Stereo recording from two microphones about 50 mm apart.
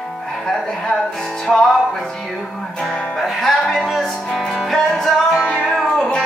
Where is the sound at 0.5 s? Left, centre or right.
Centre.